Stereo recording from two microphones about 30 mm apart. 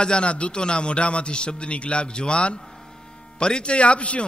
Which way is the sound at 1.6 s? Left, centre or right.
Left.